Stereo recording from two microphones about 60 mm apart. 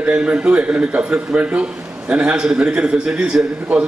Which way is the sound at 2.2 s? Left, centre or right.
Centre.